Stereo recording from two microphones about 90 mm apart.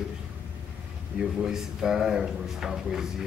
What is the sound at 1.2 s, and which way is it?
Speech, 5° right (ahead or behind).